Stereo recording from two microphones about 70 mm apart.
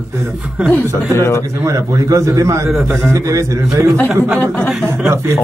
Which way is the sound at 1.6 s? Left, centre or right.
Right.